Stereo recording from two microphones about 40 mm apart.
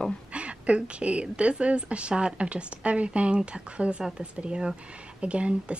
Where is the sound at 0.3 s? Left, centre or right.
Right.